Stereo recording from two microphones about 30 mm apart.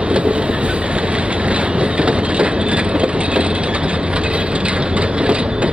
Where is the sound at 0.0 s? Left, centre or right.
Right.